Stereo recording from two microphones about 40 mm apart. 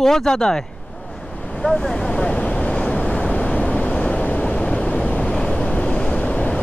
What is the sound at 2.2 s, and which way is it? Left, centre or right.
Vehicle, centre.